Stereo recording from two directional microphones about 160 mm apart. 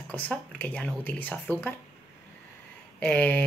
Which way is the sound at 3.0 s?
5° left (ahead or behind).